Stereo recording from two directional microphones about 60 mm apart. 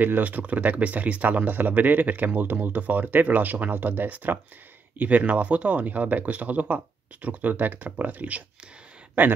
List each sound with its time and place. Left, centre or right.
0.0 s speech: right